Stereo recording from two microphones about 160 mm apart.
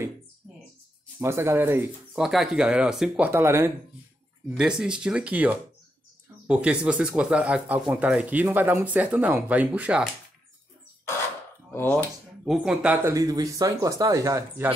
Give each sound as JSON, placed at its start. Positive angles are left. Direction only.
{"t": 1.2, "sound": "speech", "side_deg": -15}
{"t": 2.1, "sound": "speech", "side_deg": 0}
{"t": 3.3, "sound": "speech", "side_deg": -15}
{"t": 4.5, "sound": "speech", "side_deg": -5}
{"t": 11.7, "sound": "speech", "side_deg": 10}
{"t": 12.4, "sound": "speech", "side_deg": -5}
{"t": 13.1, "sound": "speech", "side_deg": -20}